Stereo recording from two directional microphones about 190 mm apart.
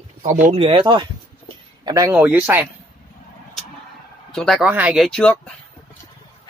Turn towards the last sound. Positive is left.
turn(degrees=5)  # may be behind; listen again after turning